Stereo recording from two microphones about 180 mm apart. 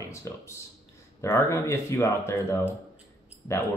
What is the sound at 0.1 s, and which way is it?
Speech, 15° left (ahead or behind).